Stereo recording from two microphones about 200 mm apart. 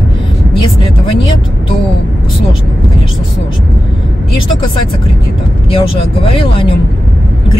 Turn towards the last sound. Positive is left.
turn(degrees=25)  # may be behind; listen again after turning